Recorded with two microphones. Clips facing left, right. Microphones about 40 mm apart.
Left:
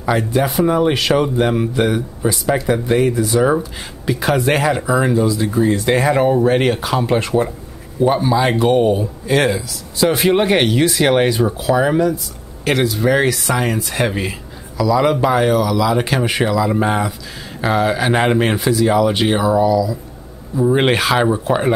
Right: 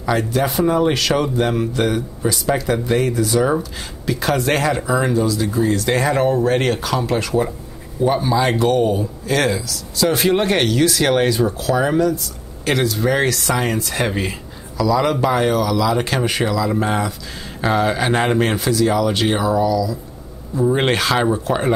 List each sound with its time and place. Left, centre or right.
0.0 s speech: centre
8.0 s speech: centre
17.6 s speech: centre